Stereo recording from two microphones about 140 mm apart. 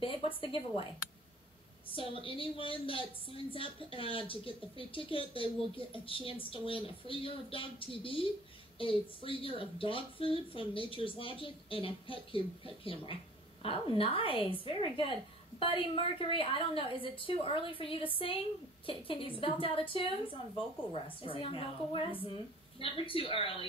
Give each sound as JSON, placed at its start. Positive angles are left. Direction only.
{"t": 0.0, "sound": "a sound", "side_deg": 40}
{"t": 0.4, "sound": "speech", "side_deg": 40}
{"t": 2.0, "sound": "speech", "side_deg": 40}